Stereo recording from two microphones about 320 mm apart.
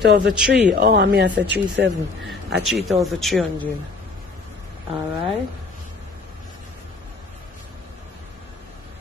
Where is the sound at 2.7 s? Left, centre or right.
Centre.